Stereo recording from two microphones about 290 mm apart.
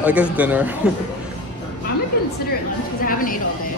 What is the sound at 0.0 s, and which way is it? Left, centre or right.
Speech, centre.